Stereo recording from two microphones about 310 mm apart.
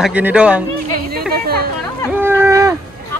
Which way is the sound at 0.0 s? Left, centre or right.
Centre.